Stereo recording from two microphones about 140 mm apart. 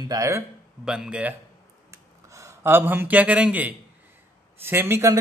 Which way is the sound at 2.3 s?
20° right (ahead or behind).